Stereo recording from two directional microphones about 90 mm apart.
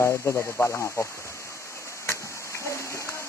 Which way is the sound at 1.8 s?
35° left (ahead or behind).